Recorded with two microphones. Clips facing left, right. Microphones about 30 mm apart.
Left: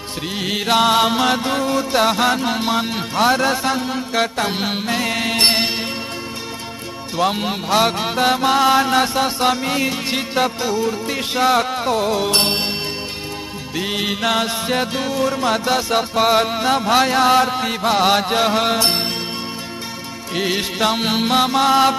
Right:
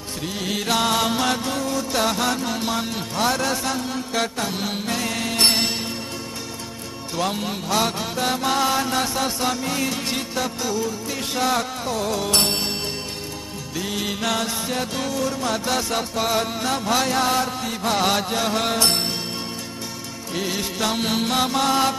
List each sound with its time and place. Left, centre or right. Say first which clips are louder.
0.4 s mantra: left 6 dB; left
4.5 s music: left 5 dB; left
7.2 s mantra: left 6 dB; left
12.4 s music: left 4 dB; left
13.7 s music: left 5 dB; left
15.0 s mantra: left 5 dB; left
17.8 s mantra: left 5 dB; left
20.3 s mantra: left 5 dB; left